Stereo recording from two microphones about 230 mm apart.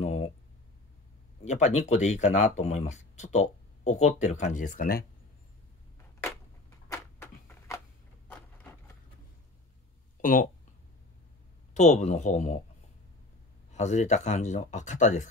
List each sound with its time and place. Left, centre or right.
0.0 s a sound: left
1.4 s speech: left
6.9 s a sound: centre
8.3 s wood: centre
10.2 s speech: left
11.7 s speech: left
13.7 s speech: left